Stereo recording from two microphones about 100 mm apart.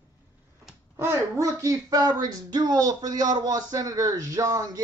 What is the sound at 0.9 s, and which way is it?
Speech, 25° right (ahead or behind).